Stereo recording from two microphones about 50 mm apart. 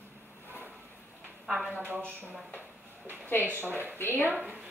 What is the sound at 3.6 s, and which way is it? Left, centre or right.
Speech, right.